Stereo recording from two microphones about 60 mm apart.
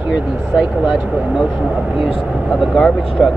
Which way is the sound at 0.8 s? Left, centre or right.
Centre.